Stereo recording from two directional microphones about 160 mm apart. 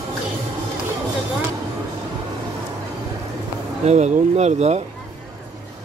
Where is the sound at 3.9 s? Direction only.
45° right (ahead or behind).